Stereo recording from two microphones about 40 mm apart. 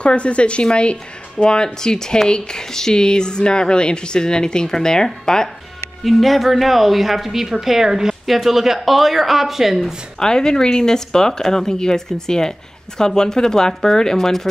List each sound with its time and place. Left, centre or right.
0.0 s speech: left; by 5.5 s centre
6.0 s a woman's voice: centre
10.1 s speech: centre